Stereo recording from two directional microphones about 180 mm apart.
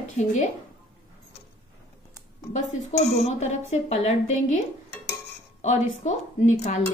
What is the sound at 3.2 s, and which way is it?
A woman's voice, 40° left (ahead or behind).